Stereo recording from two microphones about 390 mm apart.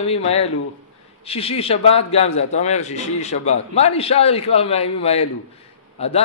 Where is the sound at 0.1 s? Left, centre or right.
Centre.